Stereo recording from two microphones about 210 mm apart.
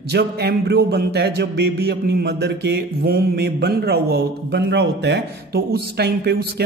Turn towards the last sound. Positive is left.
turn(degrees=-50)  # may be behind; listen again after turning